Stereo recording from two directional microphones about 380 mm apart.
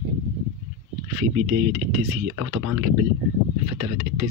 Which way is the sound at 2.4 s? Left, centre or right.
Right.